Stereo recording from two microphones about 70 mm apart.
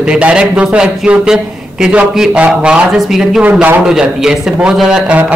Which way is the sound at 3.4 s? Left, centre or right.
Right.